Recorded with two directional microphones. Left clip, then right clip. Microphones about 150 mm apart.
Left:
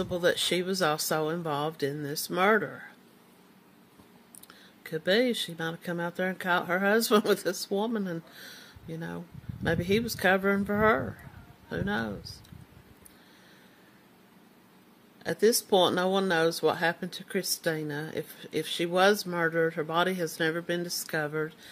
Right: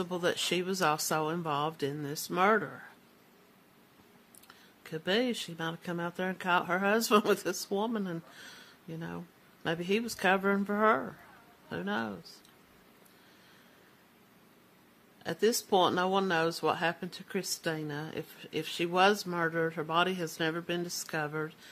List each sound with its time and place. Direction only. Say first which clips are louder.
0.0 s speech: left 5 dB; 10° right (ahead or behind)
4.8 s speech: left 5 dB; 10° right (ahead or behind)
15.2 s speech: left 5 dB; 5° right (ahead or behind)